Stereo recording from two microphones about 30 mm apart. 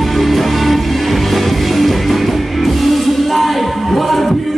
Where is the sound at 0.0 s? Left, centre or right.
Centre.